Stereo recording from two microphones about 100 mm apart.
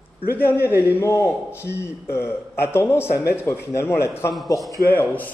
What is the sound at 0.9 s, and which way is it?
A man's voice, 30° left (ahead or behind).